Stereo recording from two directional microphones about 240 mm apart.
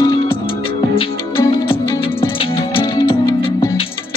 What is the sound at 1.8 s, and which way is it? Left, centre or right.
Music, centre.